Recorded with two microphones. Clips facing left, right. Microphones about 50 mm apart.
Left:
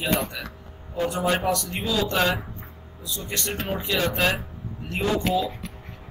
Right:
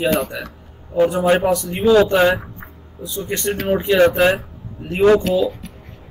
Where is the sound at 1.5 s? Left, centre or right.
Centre.